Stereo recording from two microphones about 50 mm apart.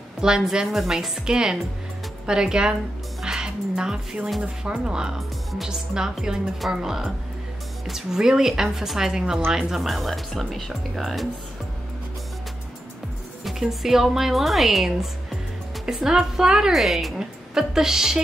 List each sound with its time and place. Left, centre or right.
0.2 s a woman's voice: centre
13.4 s a woman's voice: centre